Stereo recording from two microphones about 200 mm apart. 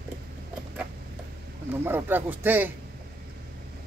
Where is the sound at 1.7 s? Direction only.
10° right (ahead or behind).